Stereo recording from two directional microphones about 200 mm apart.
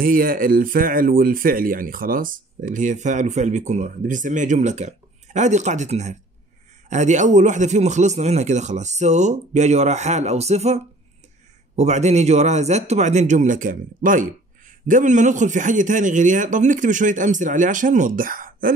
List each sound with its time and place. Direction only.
0.0 s speech: 45° right (ahead or behind)